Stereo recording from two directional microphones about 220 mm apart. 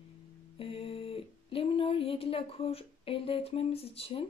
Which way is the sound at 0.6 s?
25° left (ahead or behind).